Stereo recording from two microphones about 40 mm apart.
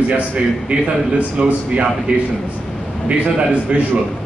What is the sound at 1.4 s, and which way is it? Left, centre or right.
A man's voice, right.